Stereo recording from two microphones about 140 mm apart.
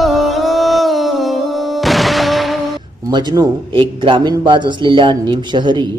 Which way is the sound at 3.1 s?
30° right (ahead or behind).